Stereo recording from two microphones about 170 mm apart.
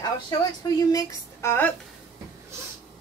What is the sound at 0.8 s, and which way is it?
Speech, 20° left (ahead or behind).